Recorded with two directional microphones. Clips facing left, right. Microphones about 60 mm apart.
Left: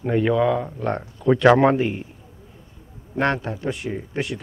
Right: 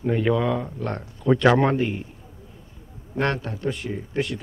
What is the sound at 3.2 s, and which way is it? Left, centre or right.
Speech, centre.